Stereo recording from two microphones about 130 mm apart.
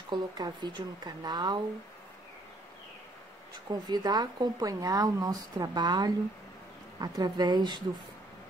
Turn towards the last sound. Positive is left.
turn(degrees=-35)  # may be behind; listen again after turning